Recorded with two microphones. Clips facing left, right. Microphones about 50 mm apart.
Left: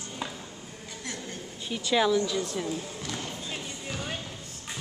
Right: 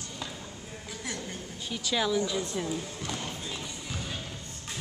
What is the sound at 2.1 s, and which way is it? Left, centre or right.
Speech, centre.